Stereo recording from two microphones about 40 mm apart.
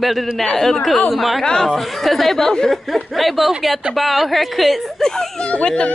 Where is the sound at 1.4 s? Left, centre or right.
Centre.